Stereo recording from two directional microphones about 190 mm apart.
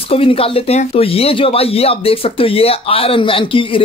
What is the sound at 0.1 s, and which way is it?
Speech, 30° left (ahead or behind).